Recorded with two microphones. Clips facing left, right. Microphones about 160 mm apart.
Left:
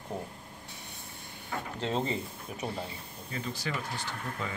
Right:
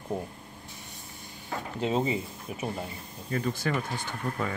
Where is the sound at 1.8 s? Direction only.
10° right (ahead or behind).